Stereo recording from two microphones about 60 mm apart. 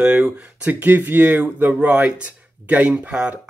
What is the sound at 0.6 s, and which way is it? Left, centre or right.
Speech, right.